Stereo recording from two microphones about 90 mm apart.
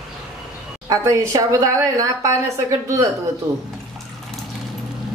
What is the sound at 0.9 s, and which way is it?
A woman's voice, 35° right (ahead or behind).